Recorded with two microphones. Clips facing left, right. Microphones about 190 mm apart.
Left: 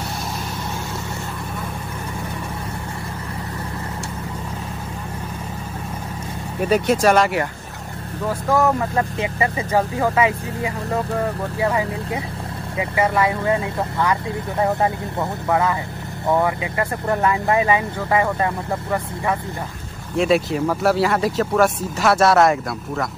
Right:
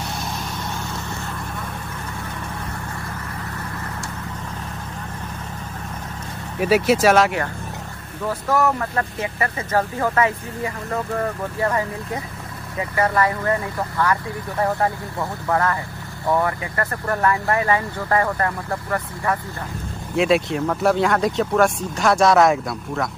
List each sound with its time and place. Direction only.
6.6 s speech: 5° right (ahead or behind)
9.2 s speech: 15° left (ahead or behind)
15.5 s speech: 15° left (ahead or behind)
20.2 s speech: centre (ahead or behind)